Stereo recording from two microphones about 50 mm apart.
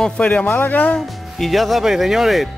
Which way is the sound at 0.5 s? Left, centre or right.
Left.